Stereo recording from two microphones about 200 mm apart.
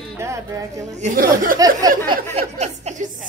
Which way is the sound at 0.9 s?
35° right (ahead or behind).